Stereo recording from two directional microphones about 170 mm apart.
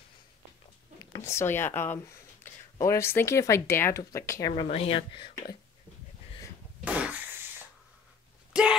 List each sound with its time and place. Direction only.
1.1 s speech: 15° left (ahead or behind)
4.6 s speech: 35° left (ahead or behind)
6.8 s fart: 5° right (ahead or behind)
8.5 s a sound: 5° right (ahead or behind)